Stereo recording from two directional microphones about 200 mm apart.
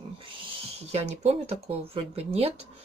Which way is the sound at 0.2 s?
25° right (ahead or behind).